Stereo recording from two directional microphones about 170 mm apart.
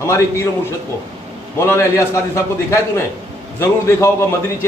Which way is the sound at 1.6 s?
15° left (ahead or behind).